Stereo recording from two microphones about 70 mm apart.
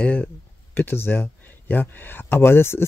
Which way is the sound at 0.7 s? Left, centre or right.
Left.